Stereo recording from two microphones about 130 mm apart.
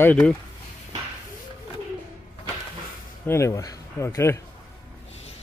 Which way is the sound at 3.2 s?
20° left (ahead or behind).